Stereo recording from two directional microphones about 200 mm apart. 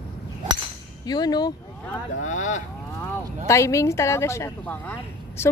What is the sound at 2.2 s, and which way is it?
Speech, 40° left (ahead or behind).